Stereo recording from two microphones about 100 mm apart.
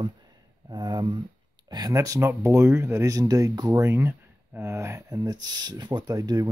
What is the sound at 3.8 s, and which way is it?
Speech, 25° right (ahead or behind).